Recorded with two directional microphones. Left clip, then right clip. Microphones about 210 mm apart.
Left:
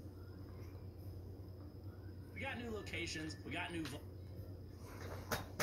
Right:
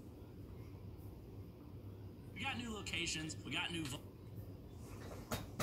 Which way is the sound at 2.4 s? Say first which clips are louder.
Right 1 dB; 50° right (ahead or behind).